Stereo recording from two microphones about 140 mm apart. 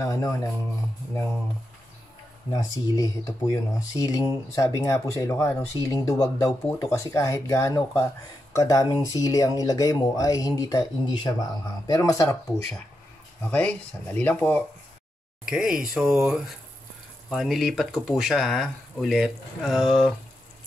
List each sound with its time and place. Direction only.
0.0 s speech: 25° left (ahead or behind)
2.5 s speech: 25° left (ahead or behind)
13.4 s speech: 10° left (ahead or behind)
15.4 s speech: 5° right (ahead or behind)